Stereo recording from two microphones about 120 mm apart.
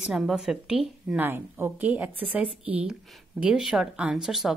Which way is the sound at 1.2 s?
15° right (ahead or behind).